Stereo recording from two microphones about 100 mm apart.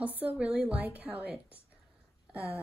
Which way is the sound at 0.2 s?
15° right (ahead or behind).